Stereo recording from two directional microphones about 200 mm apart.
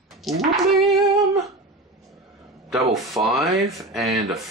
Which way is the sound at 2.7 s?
Centre (ahead or behind).